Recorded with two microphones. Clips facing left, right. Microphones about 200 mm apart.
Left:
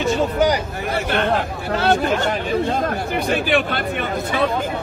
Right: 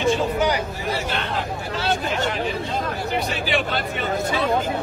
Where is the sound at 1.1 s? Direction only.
55° left (ahead or behind).